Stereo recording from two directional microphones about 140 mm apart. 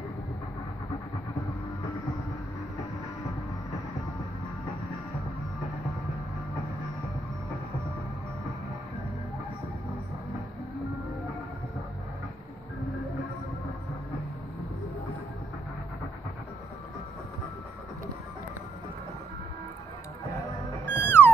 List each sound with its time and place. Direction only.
20.8 s music: 15° left (ahead or behind)